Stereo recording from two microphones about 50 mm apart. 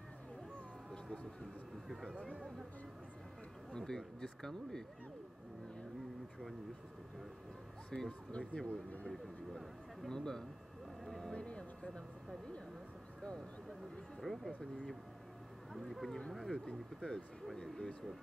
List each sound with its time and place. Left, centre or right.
3.7 s speech: centre
7.9 s speech: centre
9.1 s speech: centre
10.0 s speech: centre
11.1 s a sound: centre
11.3 s a sound: left
14.2 s speech: centre